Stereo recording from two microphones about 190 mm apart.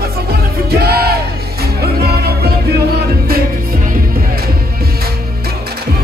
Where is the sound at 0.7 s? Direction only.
55° right (ahead or behind).